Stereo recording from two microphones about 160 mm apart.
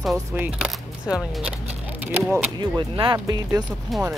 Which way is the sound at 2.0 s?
10° right (ahead or behind).